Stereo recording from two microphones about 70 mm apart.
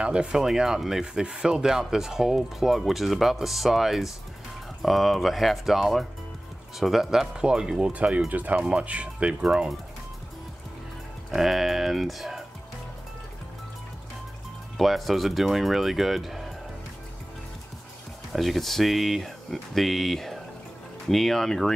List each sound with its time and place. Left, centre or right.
0.0 s speech: centre
7.9 s speech: right
11.2 s speech: centre
14.8 s speech: centre
18.3 s speech: centre